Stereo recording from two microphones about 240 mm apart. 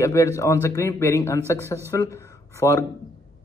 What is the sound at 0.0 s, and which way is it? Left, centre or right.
A man's voice, centre.